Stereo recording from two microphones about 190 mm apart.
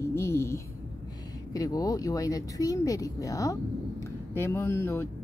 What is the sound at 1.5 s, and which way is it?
Speech, 20° left (ahead or behind).